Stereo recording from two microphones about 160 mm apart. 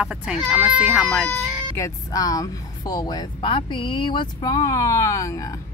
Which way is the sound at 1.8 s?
25° left (ahead or behind).